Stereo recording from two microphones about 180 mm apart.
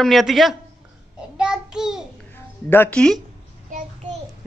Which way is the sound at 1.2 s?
5° right (ahead or behind).